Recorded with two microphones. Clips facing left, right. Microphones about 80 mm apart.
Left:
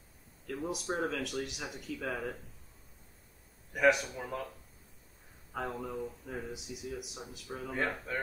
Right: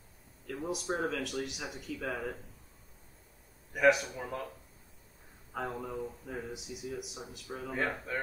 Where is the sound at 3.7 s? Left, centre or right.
Centre.